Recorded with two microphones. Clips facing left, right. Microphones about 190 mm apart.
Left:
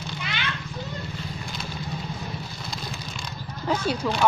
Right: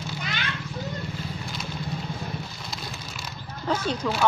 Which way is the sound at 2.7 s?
5° right (ahead or behind).